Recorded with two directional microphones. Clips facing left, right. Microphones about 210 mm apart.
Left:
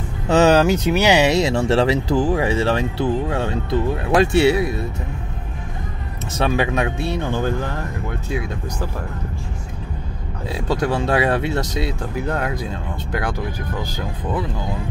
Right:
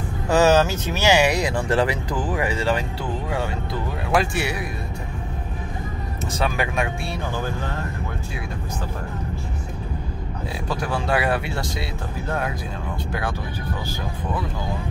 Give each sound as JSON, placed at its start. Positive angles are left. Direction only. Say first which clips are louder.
{"t": 0.3, "sound": "speech", "louder": "left 3 dB", "side_deg": 20}
{"t": 6.3, "sound": "speech", "louder": "left 5 dB", "side_deg": 25}
{"t": 10.7, "sound": "speech", "louder": "left 5 dB", "side_deg": 20}